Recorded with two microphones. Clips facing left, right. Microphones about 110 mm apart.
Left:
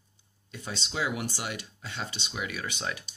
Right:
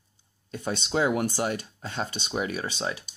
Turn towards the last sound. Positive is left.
turn(degrees=-30)  # may be behind; listen again after turning